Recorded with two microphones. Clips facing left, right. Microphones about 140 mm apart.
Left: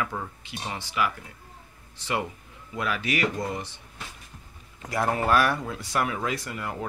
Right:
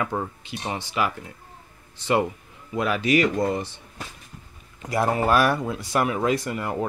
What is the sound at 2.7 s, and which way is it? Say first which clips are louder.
Speech: right 7 dB; 25° right (ahead or behind).